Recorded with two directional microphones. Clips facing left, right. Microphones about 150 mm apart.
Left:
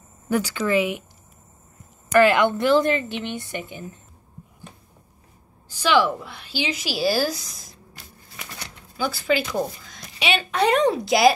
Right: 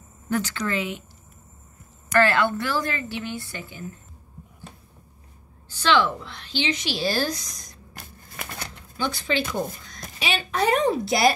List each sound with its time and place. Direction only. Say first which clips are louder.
0.3 s a woman's voice: left 4 dB; 10° left (ahead or behind)
2.1 s a woman's voice: left 4 dB; 15° left (ahead or behind)
5.7 s a woman's voice: left 2 dB; 10° left (ahead or behind)
7.9 s a sound: right 6 dB; 50° right (ahead or behind)
8.9 s speech: left 3 dB; 5° left (ahead or behind)